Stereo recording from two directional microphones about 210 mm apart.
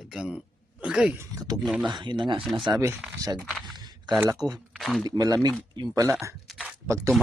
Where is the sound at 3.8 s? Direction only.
20° right (ahead or behind).